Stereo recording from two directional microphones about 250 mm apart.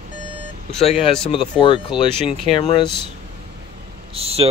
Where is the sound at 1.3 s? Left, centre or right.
Centre.